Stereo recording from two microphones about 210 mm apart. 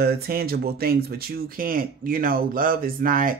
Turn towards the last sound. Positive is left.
turn(degrees=-40)  # may be behind; listen again after turning